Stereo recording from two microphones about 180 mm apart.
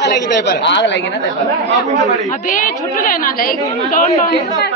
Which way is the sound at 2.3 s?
50° left (ahead or behind).